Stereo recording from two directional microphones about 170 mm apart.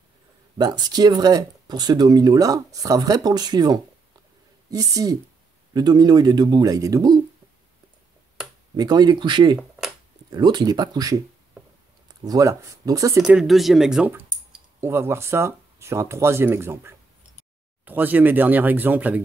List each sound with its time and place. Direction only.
0.6 s speech: 25° right (ahead or behind)
8.7 s speech: 25° right (ahead or behind)
12.3 s speech: 20° right (ahead or behind)
13.2 s speech: 5° right (ahead or behind)